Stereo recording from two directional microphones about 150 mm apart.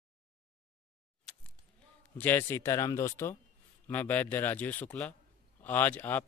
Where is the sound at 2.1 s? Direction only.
15° left (ahead or behind).